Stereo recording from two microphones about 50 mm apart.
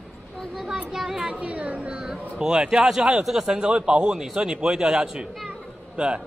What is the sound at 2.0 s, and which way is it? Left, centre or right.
A man's voice, centre.